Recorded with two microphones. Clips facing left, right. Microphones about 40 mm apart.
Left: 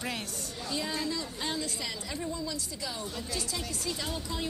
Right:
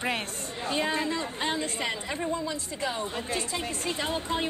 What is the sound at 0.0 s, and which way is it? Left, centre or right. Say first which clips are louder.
Speech: right 6 dB; right.